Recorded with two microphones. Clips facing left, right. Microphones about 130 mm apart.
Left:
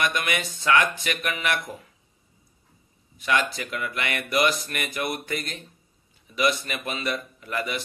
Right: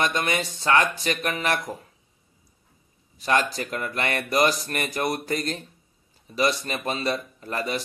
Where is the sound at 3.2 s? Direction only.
35° right (ahead or behind).